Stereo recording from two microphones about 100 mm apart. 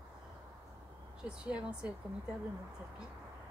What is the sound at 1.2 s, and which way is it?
Speech, 10° right (ahead or behind).